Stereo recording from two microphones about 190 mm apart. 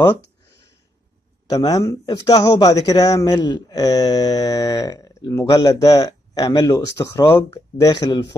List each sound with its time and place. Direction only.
1.5 s speech: 20° left (ahead or behind)